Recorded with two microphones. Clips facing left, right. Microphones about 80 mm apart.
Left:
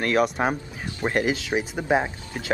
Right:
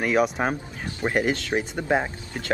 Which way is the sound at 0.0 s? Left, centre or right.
Centre.